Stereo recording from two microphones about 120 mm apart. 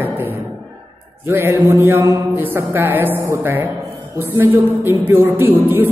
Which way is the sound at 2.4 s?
15° right (ahead or behind).